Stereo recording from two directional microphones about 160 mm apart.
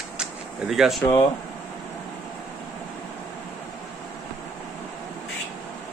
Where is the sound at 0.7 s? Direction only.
Centre (ahead or behind).